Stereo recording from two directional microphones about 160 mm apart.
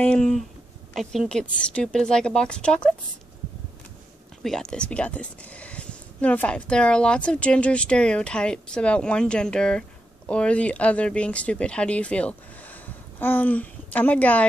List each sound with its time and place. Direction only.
0.0 s a woman's voice: 5° left (ahead or behind)
4.4 s speech: 5° left (ahead or behind)